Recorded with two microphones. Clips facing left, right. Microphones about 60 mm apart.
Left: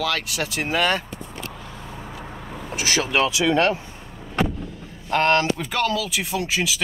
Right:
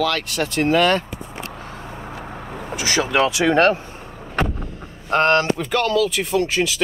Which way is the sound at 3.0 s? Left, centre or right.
Right.